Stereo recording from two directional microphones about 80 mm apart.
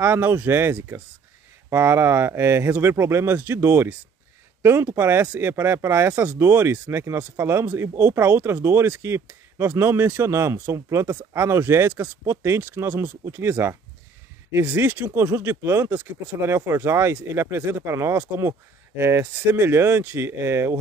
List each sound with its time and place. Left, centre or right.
0.0 s speech: right